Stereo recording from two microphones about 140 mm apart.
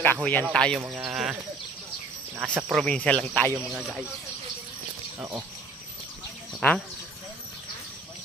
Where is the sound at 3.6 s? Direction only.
5° right (ahead or behind).